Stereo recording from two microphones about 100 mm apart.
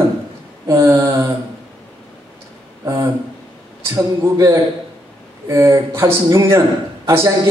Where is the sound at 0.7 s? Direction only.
30° right (ahead or behind).